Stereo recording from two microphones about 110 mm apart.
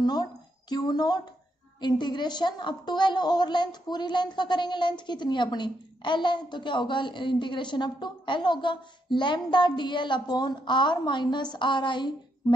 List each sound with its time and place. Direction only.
0.0 s a woman's voice: 40° left (ahead or behind)